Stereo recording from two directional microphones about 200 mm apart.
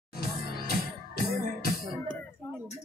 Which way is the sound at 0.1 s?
50° left (ahead or behind).